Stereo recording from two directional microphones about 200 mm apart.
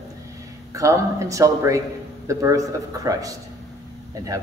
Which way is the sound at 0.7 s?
15° right (ahead or behind).